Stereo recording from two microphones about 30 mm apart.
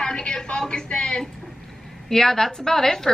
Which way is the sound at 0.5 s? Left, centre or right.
Left.